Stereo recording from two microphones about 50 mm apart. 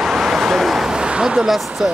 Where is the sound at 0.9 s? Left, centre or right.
Centre.